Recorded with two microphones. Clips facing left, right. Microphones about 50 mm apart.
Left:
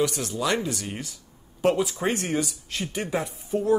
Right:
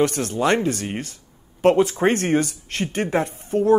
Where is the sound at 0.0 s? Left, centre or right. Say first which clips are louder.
Right 6 dB; right.